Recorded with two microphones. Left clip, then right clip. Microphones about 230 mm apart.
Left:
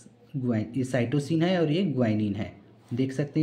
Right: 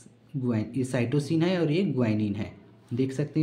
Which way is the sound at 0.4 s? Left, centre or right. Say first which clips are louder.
Even; centre.